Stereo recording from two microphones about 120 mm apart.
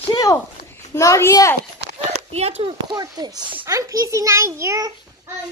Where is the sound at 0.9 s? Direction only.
25° left (ahead or behind).